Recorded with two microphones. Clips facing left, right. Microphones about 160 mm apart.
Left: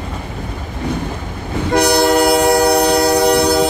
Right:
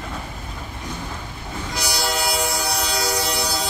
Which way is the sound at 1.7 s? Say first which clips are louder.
Left 14 dB; 60° left (ahead or behind).